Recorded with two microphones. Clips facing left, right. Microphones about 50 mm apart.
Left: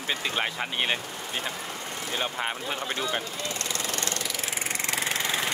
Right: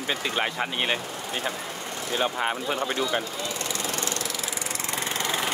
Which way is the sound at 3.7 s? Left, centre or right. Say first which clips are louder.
Right 1 dB; left.